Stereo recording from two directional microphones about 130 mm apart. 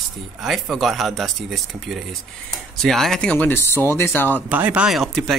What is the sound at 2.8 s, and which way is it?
Speech, centre (ahead or behind).